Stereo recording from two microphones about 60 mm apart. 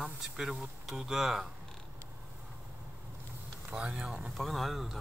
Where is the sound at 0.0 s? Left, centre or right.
Centre.